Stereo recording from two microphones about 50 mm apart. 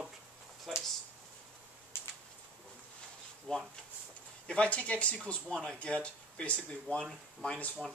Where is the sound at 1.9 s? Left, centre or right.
Left.